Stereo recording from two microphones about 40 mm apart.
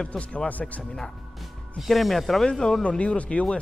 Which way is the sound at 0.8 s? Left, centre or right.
Centre.